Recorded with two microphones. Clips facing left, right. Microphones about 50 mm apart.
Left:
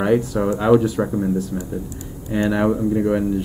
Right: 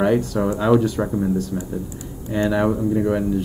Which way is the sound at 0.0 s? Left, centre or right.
Centre.